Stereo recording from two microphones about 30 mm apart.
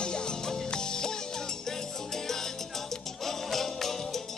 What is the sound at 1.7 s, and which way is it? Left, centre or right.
Salsa music, centre.